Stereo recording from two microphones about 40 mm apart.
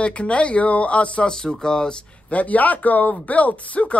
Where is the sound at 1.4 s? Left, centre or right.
Centre.